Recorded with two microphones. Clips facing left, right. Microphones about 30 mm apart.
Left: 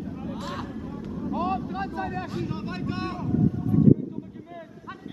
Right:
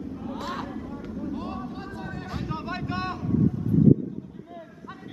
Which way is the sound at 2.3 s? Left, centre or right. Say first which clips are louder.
Even; centre.